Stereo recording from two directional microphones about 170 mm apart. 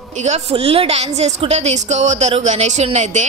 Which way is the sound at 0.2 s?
40° right (ahead or behind).